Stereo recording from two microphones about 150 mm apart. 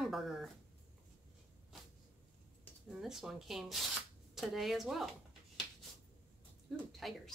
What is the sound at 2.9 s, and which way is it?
Speech, centre (ahead or behind).